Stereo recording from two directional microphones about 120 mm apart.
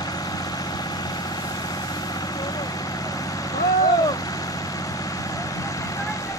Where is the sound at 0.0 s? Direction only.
35° left (ahead or behind).